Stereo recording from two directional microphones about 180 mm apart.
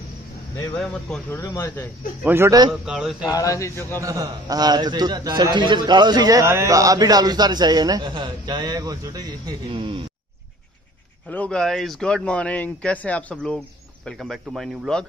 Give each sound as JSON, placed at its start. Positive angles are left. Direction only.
{"t": 0.7, "sound": "speech", "side_deg": 5}
{"t": 1.3, "sound": "speech", "side_deg": 15}
{"t": 2.2, "sound": "speech", "side_deg": -15}
{"t": 2.8, "sound": "speech", "side_deg": 0}
{"t": 3.3, "sound": "speech", "side_deg": 20}
{"t": 4.0, "sound": "a man's voice", "side_deg": -20}
{"t": 11.2, "sound": "speech", "side_deg": 5}